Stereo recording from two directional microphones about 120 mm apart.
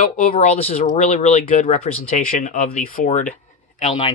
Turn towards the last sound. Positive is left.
turn(degrees=60)  # may be behind; listen again after turning